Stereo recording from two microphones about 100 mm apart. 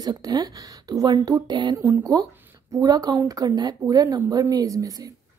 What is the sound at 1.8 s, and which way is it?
Speech, 30° right (ahead or behind).